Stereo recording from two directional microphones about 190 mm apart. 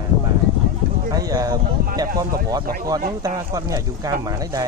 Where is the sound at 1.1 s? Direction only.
20° right (ahead or behind).